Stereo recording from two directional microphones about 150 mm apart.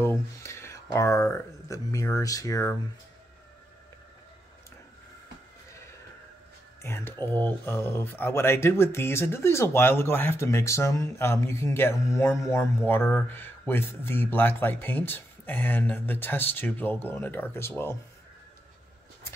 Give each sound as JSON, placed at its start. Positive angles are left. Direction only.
{"t": 0.0, "sound": "a sound", "side_deg": 15}
{"t": 0.9, "sound": "speech", "side_deg": 20}
{"t": 5.7, "sound": "neigh", "side_deg": 20}
{"t": 6.8, "sound": "speech", "side_deg": 15}